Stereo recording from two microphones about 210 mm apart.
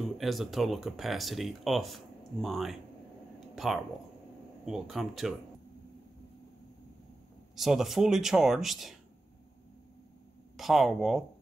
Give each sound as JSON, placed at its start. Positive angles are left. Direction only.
{"t": 0.0, "sound": "speech", "side_deg": 0}
{"t": 7.5, "sound": "speech", "side_deg": 0}
{"t": 10.6, "sound": "speech", "side_deg": 0}